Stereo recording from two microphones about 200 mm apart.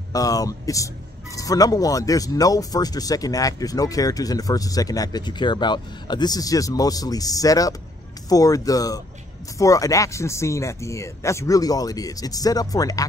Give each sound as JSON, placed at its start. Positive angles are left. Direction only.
{"t": 0.1, "sound": "speech", "side_deg": 15}